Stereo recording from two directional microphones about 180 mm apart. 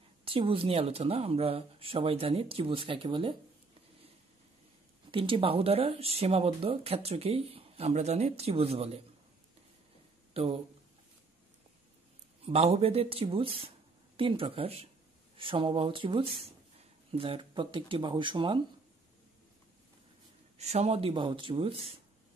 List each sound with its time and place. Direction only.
0.2 s speech: 30° right (ahead or behind)
5.1 s speech: 30° right (ahead or behind)
10.3 s speech: 35° right (ahead or behind)
12.4 s speech: 35° right (ahead or behind)
20.5 s speech: 35° right (ahead or behind)